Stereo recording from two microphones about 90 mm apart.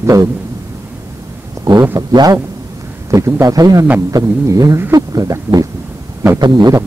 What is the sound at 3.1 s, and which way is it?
A woman's voice, 35° right (ahead or behind).